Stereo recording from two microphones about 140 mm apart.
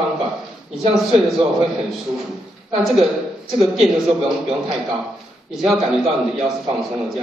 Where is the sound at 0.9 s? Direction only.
Centre (ahead or behind).